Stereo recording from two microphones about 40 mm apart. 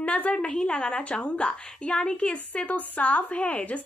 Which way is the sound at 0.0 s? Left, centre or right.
Left.